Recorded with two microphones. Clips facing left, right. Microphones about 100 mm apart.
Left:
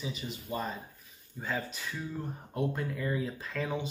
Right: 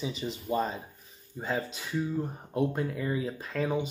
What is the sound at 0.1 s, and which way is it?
Speech, 30° right (ahead or behind).